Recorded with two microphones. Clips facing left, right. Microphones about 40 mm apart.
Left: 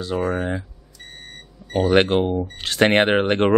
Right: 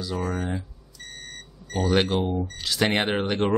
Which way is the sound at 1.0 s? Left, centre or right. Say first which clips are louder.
Even; centre.